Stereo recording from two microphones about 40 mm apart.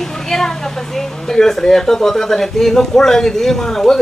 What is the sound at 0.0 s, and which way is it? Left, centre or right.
Speech, centre.